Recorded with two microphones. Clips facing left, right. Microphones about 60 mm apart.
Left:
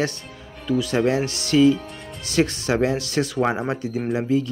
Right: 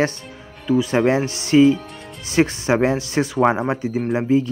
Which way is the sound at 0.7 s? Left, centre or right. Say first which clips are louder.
Right 3 dB; right.